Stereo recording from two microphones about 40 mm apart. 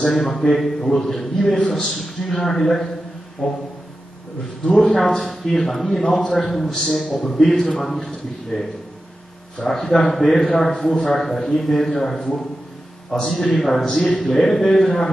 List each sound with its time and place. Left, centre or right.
0.1 s a man's voice: centre
4.8 s a man's voice: centre